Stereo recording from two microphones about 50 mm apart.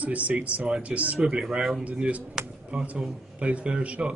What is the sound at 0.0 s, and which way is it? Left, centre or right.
Speech, right.